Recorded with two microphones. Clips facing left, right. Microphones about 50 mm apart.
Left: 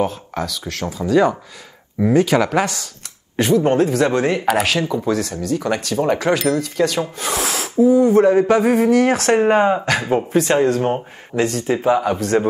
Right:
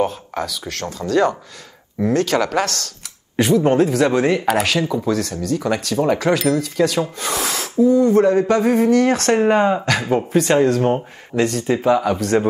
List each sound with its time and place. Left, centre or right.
0.0 s speech: centre
3.3 s speech: centre